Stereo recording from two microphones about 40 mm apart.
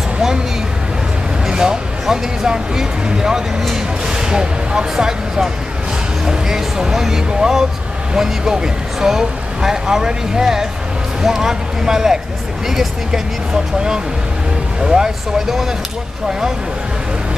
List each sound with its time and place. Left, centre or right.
1.5 s speech: centre